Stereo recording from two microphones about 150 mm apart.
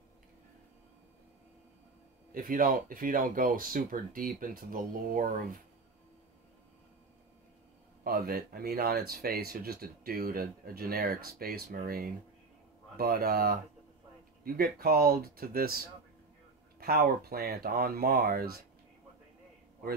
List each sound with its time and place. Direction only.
2.3 s speech: 70° right (ahead or behind)
8.0 s speech: 85° right
16.8 s speech: 90° right